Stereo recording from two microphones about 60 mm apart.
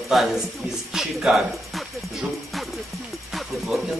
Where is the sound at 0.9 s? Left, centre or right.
Centre.